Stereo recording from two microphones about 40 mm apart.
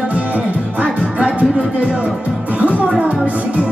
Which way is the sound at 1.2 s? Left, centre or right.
Right.